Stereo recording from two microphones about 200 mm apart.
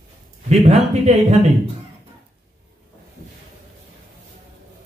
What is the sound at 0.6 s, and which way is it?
Speech, 35° right (ahead or behind).